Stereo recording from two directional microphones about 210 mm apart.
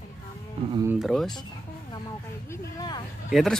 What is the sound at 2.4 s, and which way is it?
Speech, 20° left (ahead or behind).